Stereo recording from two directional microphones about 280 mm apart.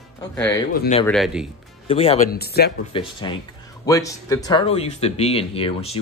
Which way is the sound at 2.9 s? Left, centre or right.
Centre.